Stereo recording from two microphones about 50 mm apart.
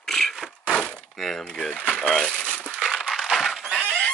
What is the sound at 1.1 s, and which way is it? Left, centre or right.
A child's voice, centre.